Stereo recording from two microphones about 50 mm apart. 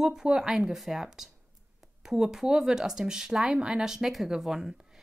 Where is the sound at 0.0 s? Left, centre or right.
Centre.